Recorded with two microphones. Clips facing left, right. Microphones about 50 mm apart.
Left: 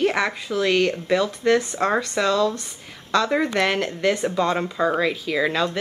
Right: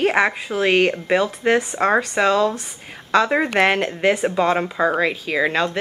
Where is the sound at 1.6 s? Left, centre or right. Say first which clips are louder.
Right 4 dB; centre.